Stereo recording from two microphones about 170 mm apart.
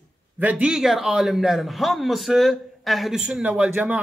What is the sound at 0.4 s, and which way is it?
A man's voice, 10° right (ahead or behind).